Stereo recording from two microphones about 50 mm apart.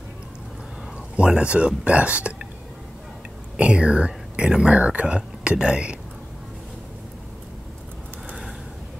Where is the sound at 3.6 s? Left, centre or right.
Right.